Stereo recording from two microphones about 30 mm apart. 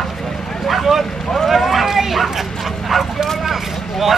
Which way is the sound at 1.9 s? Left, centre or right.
Centre.